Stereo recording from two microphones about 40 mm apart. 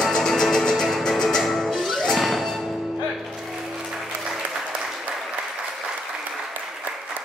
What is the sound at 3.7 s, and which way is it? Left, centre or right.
Music, centre.